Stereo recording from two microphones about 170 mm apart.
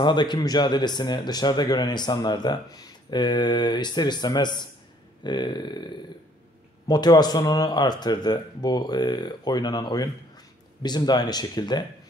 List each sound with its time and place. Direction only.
0.0 s a man's voice: 25° left (ahead or behind)